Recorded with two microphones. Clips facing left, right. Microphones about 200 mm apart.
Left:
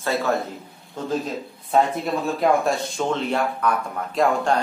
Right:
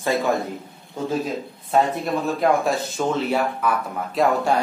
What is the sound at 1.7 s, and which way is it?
A man's voice, centre (ahead or behind).